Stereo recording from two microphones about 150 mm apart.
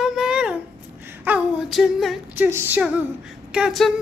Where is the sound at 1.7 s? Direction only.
Centre (ahead or behind).